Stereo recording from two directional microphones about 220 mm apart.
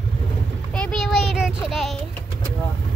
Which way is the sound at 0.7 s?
5° left (ahead or behind).